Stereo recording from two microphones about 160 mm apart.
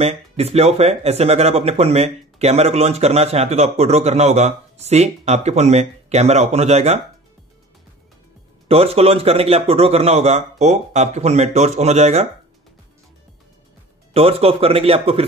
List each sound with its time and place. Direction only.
0.0 s speech: 40° right (ahead or behind)
8.6 s a man's voice: 40° right (ahead or behind)
14.1 s speech: 40° right (ahead or behind)